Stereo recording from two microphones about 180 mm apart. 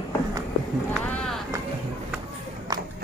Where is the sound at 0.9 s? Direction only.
5° left (ahead or behind).